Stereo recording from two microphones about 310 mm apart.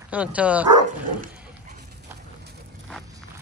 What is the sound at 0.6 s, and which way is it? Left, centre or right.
Speech, right.